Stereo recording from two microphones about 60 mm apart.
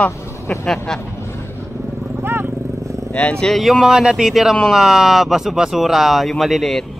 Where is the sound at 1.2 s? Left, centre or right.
Left.